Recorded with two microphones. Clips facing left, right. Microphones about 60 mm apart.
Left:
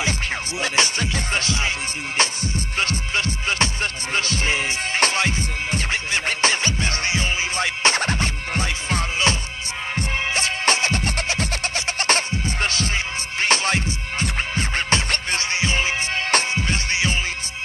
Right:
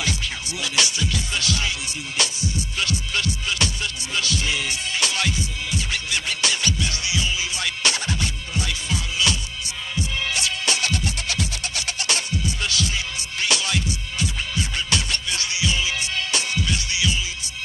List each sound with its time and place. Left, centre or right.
0.6 s music: left